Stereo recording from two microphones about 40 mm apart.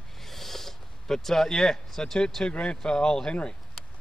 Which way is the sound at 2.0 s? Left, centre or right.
Left.